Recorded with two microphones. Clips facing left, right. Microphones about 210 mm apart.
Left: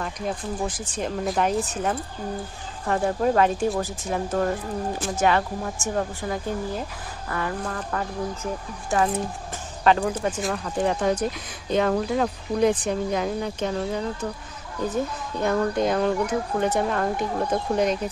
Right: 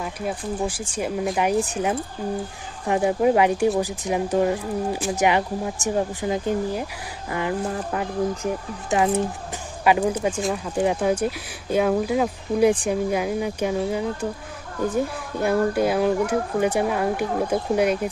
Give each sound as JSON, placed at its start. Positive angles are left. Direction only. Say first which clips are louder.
{"t": 0.0, "sound": "speech", "louder": "right 1 dB", "side_deg": -5}
{"t": 15.4, "sound": "speech", "louder": "right 2 dB", "side_deg": -10}